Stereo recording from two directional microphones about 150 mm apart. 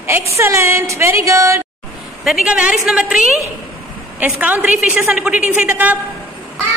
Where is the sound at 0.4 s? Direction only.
20° right (ahead or behind).